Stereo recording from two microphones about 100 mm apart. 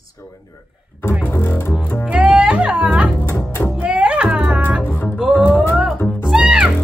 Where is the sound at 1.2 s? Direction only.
20° left (ahead or behind).